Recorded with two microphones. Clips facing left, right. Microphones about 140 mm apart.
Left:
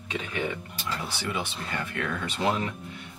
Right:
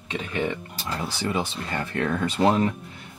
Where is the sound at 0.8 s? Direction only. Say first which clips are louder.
Right 5 dB; 35° right (ahead or behind).